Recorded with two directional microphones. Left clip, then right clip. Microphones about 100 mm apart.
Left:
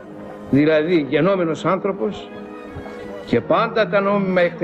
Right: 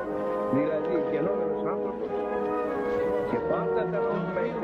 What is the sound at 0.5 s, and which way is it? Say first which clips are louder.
A man's voice: left 14 dB; 15° left (ahead or behind).